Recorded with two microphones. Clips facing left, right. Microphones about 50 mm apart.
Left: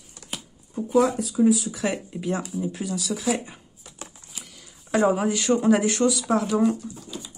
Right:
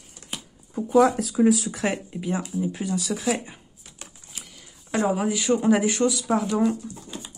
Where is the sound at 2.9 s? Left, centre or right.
Right.